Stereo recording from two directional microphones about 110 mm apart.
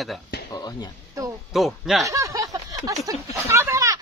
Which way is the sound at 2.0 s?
30° right (ahead or behind).